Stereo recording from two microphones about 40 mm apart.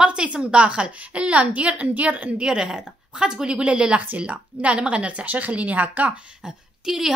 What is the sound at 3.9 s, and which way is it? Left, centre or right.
A woman's voice, right.